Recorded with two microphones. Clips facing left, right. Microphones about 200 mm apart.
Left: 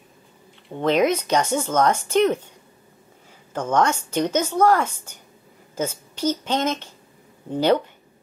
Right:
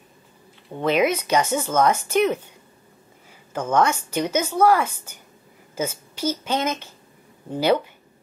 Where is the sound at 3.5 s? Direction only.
5° right (ahead or behind).